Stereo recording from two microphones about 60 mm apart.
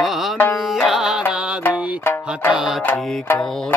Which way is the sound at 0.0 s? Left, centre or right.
Centre.